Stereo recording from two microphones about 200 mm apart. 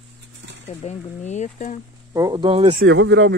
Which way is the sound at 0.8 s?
35° left (ahead or behind).